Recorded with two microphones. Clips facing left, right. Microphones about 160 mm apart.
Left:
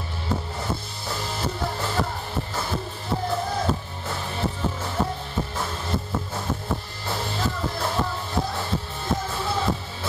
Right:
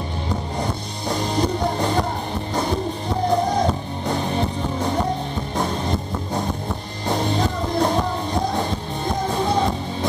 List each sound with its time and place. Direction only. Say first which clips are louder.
1.0 s music: right 9 dB; 20° right (ahead or behind)
3.3 s music: right 7 dB; 15° right (ahead or behind)
7.3 s music: right 7 dB; 20° right (ahead or behind)